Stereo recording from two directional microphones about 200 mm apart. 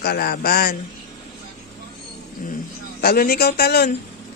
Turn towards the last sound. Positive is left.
turn(degrees=50)  # may be behind; listen again after turning